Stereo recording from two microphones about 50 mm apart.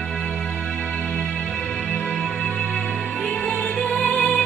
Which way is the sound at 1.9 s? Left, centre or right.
Centre.